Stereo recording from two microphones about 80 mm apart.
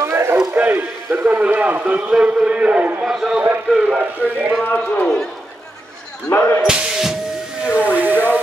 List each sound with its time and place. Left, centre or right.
0.0 s a sound: right
0.6 s a man's voice: right
3.1 s a man's voice: centre
4.0 s speech: right
4.6 s a man's voice: centre
6.6 s speech: centre